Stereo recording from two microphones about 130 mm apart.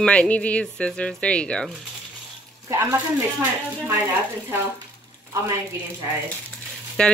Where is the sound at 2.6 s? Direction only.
15° right (ahead or behind).